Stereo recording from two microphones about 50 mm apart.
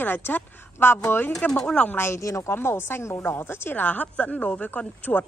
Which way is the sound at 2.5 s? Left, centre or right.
Left.